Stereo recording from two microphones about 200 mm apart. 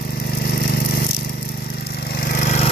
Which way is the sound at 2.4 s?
35° left (ahead or behind).